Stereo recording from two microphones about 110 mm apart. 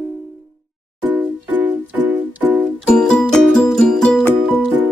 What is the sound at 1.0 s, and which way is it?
Music, 20° right (ahead or behind).